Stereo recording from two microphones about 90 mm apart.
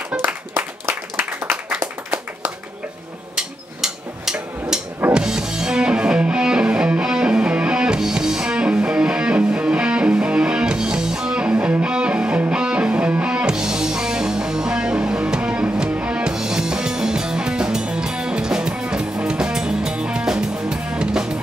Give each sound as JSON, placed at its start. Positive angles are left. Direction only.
{"t": 0.1, "sound": "applause", "side_deg": -20}
{"t": 3.3, "sound": "a sound", "side_deg": -5}
{"t": 5.1, "sound": "music", "side_deg": -10}